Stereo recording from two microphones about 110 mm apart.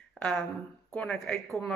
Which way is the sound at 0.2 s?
5° left (ahead or behind).